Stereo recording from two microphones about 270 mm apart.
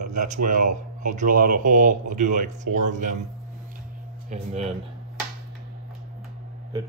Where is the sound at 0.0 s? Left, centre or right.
Right.